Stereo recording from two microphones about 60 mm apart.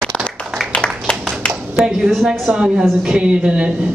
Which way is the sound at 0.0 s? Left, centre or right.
Centre.